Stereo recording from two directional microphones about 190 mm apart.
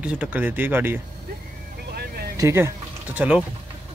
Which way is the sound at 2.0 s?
55° right (ahead or behind).